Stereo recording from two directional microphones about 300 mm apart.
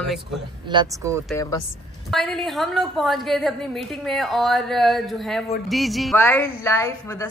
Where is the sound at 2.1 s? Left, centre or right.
Centre.